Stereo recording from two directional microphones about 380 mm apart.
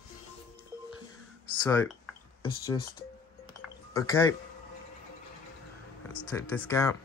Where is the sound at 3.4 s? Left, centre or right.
Centre.